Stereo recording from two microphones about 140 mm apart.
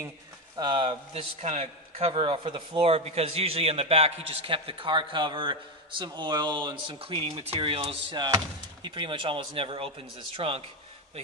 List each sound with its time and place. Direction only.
0.6 s a man's voice: 35° right (ahead or behind)